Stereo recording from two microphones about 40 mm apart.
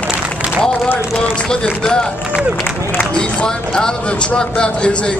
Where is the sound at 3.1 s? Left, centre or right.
Left.